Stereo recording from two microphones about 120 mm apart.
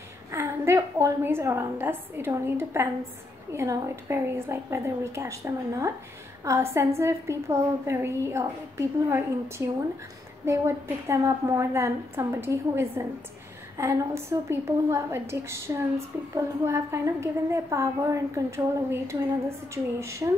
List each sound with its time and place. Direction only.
0.3 s a woman's voice: 25° right (ahead or behind)